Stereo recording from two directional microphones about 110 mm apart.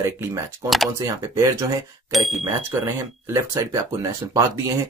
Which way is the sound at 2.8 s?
20° right (ahead or behind).